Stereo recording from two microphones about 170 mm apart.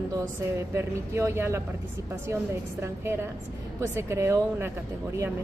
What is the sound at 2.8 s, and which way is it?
Speech, 15° right (ahead or behind).